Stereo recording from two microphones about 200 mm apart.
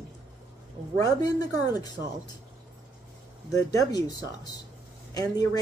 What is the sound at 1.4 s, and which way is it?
Speech, 20° left (ahead or behind).